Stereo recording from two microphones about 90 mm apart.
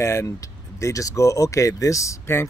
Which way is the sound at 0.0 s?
35° left (ahead or behind).